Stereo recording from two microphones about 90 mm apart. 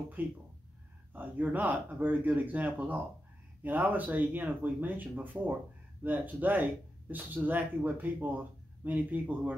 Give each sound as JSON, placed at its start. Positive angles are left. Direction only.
{"t": 0.2, "sound": "speech", "side_deg": -20}